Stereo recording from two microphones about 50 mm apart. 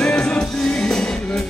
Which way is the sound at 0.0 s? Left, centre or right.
Left.